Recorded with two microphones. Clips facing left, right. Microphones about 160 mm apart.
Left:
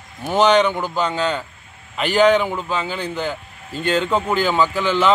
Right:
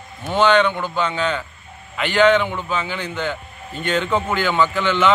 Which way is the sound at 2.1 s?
40° left (ahead or behind).